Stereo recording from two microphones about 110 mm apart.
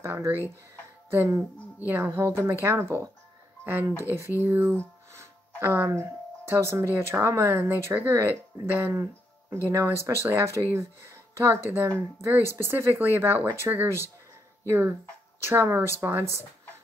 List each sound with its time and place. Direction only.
0.0 s speech: 25° right (ahead or behind)